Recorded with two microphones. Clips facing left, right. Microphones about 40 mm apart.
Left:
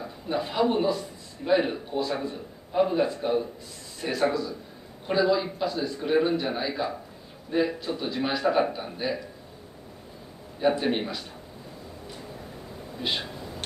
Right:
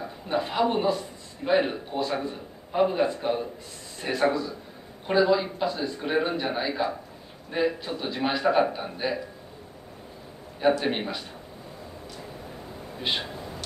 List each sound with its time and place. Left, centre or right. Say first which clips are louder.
0.0 s a man's voice: right 1 dB; centre
4.0 s a man's voice: right 1 dB; right
10.9 s a man's voice: left 1 dB; centre
12.9 s speech: right 1 dB; centre